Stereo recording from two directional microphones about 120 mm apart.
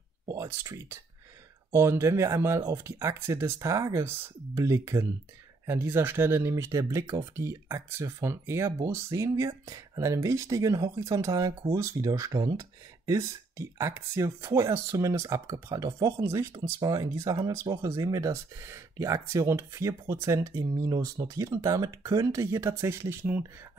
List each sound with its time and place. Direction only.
0.3 s speech: 25° right (ahead or behind)